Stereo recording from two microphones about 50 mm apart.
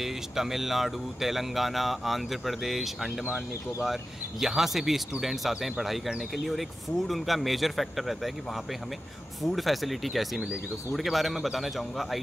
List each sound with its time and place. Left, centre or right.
0.0 s speech: centre
9.4 s speech: centre